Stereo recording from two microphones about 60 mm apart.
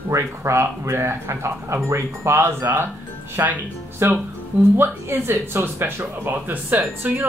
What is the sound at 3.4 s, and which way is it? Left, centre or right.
Speech, right.